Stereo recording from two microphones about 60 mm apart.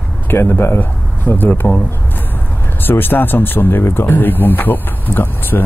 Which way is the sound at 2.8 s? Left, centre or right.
Left.